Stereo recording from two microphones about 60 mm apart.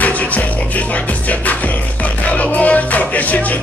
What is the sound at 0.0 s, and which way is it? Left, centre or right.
Music, left.